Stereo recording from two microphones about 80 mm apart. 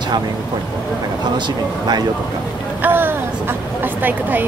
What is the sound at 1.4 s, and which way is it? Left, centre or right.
Speech, right.